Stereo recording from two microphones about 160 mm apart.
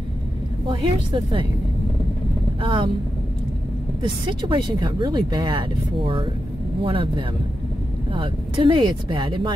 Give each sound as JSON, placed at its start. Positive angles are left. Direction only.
{"t": 1.1, "sound": "speech", "side_deg": -30}
{"t": 2.6, "sound": "speech", "side_deg": -30}
{"t": 4.0, "sound": "speech", "side_deg": -30}